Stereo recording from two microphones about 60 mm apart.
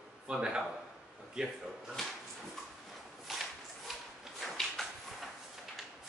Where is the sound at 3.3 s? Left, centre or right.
Centre.